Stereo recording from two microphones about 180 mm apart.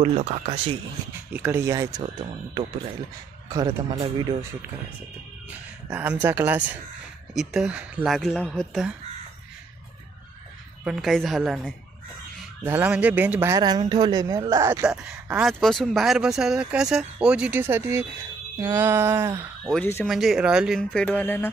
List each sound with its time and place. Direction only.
0.0 s speech: 40° right (ahead or behind)
1.3 s speech: 10° right (ahead or behind)
5.9 s speech: 10° right (ahead or behind)
10.8 s speech: centre (ahead or behind)
12.6 s speech: 10° right (ahead or behind)
13.6 s speech: 20° right (ahead or behind)
14.9 s speech: 5° right (ahead or behind)
19.7 s speech: 10° left (ahead or behind)
20.1 s speech: centre (ahead or behind)